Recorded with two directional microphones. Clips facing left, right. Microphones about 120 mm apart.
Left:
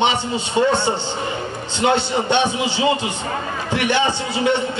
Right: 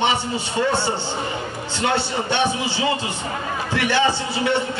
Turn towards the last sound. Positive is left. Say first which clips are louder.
# left 2 dB
turn(degrees=20)  # may be behind; listen again after turning